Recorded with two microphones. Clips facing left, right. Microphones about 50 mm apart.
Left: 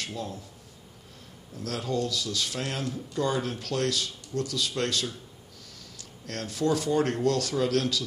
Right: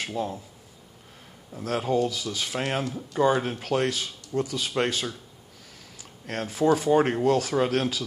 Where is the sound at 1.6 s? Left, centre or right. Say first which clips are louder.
Right 5 dB; right.